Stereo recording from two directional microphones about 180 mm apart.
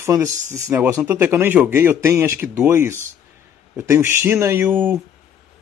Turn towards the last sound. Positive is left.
turn(degrees=-10)  # may be behind; listen again after turning